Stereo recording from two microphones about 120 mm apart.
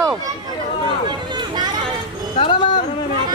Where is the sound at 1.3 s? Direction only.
40° right (ahead or behind).